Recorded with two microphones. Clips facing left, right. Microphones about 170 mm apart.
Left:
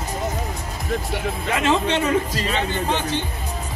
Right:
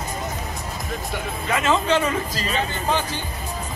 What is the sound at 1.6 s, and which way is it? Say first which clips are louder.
Speech: even; 65° left (ahead or behind).